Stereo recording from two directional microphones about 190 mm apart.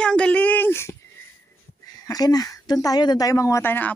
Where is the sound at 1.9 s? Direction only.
20° left (ahead or behind).